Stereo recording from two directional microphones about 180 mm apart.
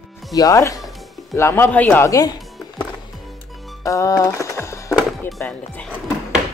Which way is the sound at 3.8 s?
20° left (ahead or behind).